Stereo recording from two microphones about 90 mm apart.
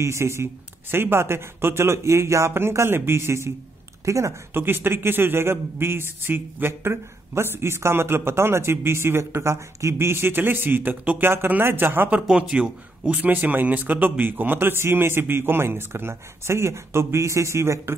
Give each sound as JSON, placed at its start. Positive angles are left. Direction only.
{"t": 0.0, "sound": "a man's voice", "side_deg": -30}